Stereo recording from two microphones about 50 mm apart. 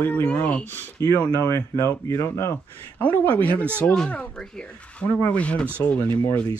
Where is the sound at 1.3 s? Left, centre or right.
Left.